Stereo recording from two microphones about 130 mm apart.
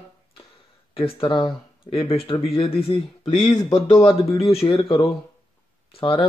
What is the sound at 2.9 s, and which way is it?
Speech, 60° left (ahead or behind).